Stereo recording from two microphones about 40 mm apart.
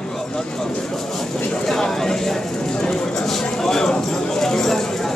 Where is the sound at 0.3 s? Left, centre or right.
Centre.